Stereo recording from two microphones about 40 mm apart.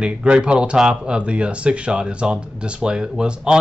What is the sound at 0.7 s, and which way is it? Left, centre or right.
Speech, centre.